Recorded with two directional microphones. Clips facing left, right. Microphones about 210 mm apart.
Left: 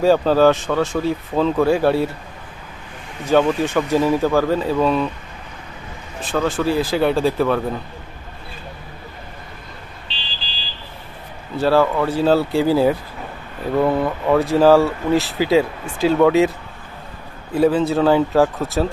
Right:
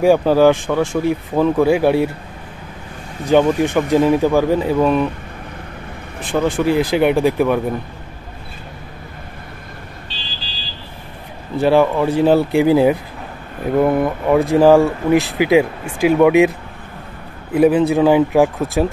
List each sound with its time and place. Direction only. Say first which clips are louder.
0.0 s speech: right 2 dB; 15° right (ahead or behind)
3.3 s speech: right 3 dB; 15° right (ahead or behind)
6.2 s speech: right 3 dB; 15° right (ahead or behind)
11.5 s speech: right 3 dB; 15° right (ahead or behind)